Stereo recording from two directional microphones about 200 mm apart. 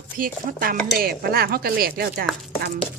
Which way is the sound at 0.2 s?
45° right (ahead or behind).